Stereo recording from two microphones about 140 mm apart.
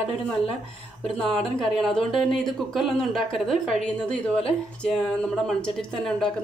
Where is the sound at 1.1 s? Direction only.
5° left (ahead or behind).